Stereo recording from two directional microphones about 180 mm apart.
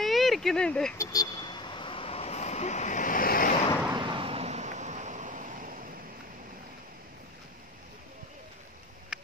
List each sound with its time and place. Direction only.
0.0 s vehicle: centre (ahead or behind)
0.9 s vehicle: 20° left (ahead or behind); by 3.5 s 50° left (ahead or behind)
3.9 s vehicle: 25° right (ahead or behind); by 5.8 s 45° right (ahead or behind)
9.1 s a sound: 5° right (ahead or behind)